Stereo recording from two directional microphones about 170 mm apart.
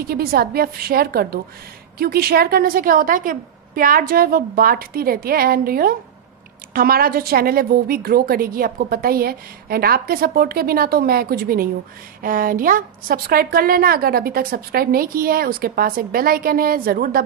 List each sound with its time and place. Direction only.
0.0 s a woman's voice: 65° right (ahead or behind)